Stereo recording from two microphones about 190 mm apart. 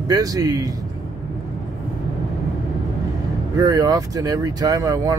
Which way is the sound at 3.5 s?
20° right (ahead or behind).